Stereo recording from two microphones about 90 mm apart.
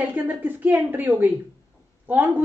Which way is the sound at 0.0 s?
20° right (ahead or behind).